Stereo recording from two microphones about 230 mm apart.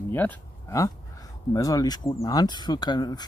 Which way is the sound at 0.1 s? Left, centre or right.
Centre.